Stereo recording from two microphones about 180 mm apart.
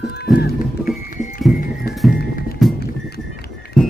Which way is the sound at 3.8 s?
5° left (ahead or behind).